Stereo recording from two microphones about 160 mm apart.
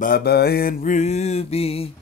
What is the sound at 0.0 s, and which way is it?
Mantra, 75° left (ahead or behind).